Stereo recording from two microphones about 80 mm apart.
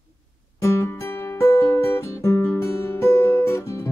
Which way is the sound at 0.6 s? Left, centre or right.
Left.